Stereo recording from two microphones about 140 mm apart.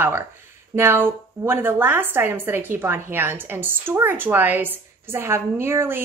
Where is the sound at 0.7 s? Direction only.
15° right (ahead or behind).